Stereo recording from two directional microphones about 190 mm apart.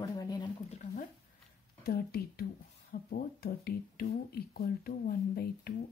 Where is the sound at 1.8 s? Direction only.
55° left (ahead or behind).